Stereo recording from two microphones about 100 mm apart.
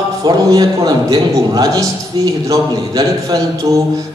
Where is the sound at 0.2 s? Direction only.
40° right (ahead or behind).